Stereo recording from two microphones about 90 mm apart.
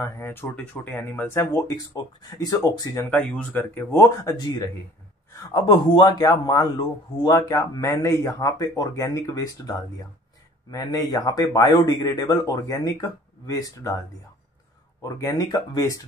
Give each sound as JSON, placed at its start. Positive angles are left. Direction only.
{"t": 0.0, "sound": "speech", "side_deg": 25}
{"t": 2.3, "sound": "speech", "side_deg": 45}
{"t": 3.1, "sound": "speech", "side_deg": 15}
{"t": 4.0, "sound": "a man's voice", "side_deg": 40}
{"t": 15.0, "sound": "speech", "side_deg": 35}